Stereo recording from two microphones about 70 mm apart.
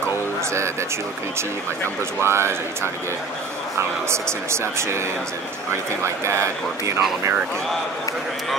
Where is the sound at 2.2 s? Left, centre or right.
Right.